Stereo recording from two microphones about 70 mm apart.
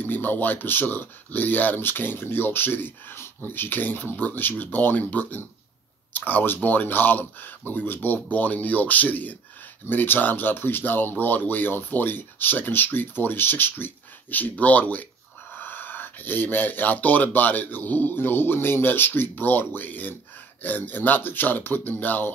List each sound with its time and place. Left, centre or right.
0.0 s speech: left